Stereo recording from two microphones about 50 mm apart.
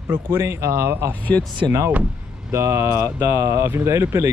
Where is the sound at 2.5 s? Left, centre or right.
Right.